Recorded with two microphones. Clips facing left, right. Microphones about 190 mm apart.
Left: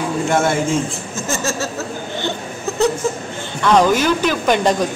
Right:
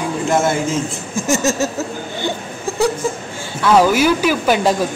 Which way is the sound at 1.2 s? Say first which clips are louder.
Right 5 dB; 15° right (ahead or behind).